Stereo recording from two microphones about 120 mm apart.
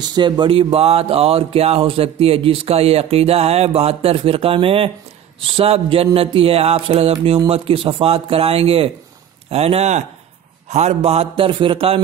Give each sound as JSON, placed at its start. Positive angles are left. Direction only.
{"t": 0.0, "sound": "speech", "side_deg": -35}
{"t": 0.7, "sound": "a man's voice", "side_deg": -55}